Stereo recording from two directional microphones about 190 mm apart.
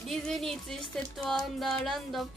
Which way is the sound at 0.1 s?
Centre (ahead or behind).